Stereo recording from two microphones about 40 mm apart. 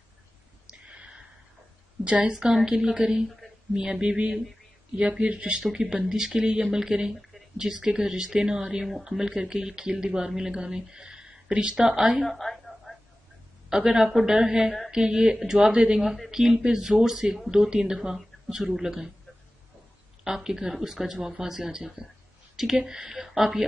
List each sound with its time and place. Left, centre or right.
0.7 s a sound: right
2.0 s speech: right
2.3 s speech: centre
5.6 s speech: centre
12.3 s a sound: centre
13.7 s speech: centre
18.1 s speech: centre
20.2 s speech: centre
23.0 s speech: centre